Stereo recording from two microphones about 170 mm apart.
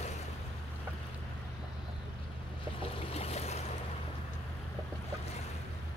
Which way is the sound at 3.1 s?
35° left (ahead or behind).